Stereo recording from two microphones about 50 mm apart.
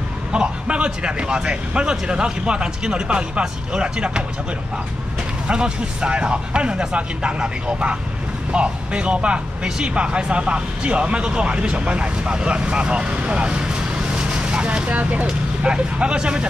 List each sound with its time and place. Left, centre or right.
0.3 s speech: right
5.5 s speech: centre
15.2 s speech: right